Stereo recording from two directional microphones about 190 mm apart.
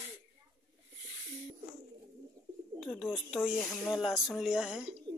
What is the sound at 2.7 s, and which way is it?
Speech, centre (ahead or behind).